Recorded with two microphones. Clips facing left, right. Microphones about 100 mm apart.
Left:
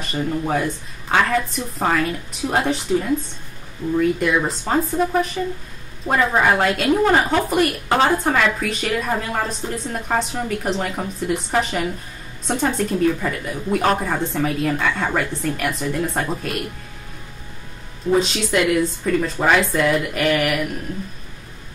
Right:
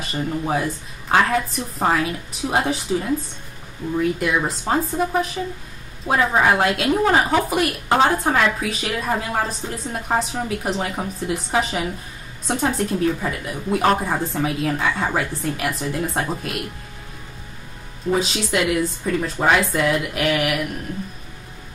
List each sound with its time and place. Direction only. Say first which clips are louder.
0.0 s a woman's voice: left 1 dB; 5° right (ahead or behind)
4.2 s a woman's voice: left 2 dB; 5° right (ahead or behind)
18.2 s a woman's voice: left 2 dB; 5° right (ahead or behind)